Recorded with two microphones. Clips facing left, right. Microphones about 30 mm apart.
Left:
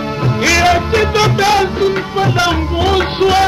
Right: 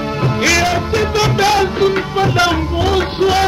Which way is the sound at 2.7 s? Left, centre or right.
Centre.